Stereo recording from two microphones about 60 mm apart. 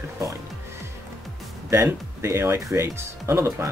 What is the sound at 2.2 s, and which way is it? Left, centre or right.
Speech, right.